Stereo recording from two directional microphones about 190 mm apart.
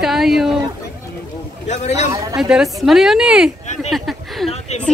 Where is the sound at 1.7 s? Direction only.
35° left (ahead or behind).